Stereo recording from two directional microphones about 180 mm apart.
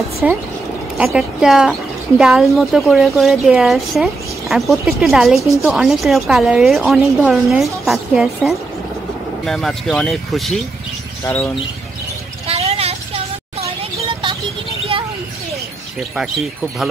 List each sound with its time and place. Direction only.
0.2 s a woman's voice: 5° right (ahead or behind)
11.2 s speech: 10° left (ahead or behind)
12.4 s vehicle: 35° right (ahead or behind)
16.0 s a woman's voice: centre (ahead or behind)